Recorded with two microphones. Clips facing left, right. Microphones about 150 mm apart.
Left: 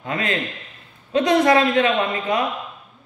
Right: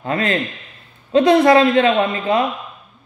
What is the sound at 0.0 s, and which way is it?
A woman's voice, 35° right (ahead or behind).